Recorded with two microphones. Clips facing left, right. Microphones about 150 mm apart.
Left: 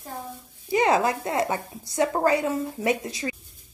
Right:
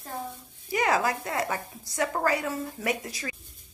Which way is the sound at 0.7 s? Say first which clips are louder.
Left 4 dB; 25° left (ahead or behind).